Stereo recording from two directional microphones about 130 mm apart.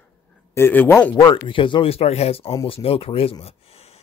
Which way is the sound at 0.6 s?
15° left (ahead or behind).